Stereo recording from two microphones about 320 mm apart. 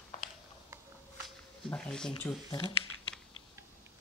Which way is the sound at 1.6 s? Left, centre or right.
Centre.